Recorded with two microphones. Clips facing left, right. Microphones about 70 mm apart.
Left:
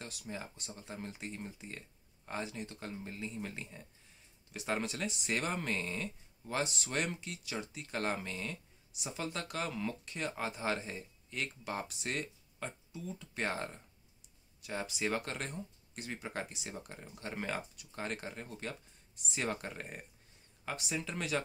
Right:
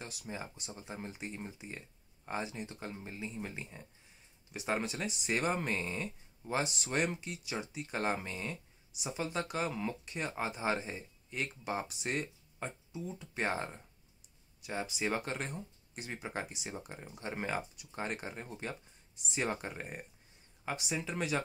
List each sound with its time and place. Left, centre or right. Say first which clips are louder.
0.3 s speech: right 1 dB; centre
6.6 s speech: right 2 dB; centre